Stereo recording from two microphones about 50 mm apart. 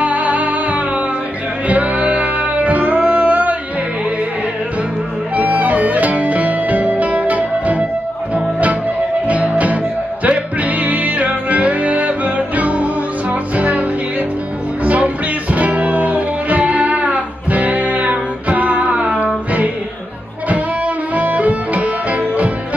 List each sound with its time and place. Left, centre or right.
0.0 s music: right
5.3 s music: right
9.3 s music: right
15.5 s music: right